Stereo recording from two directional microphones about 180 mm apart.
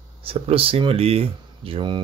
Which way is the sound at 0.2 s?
30° right (ahead or behind).